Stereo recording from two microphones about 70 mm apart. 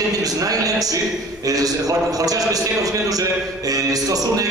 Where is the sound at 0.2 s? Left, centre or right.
Right.